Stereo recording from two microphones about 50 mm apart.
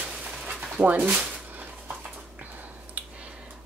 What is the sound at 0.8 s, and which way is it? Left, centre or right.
Speech, right.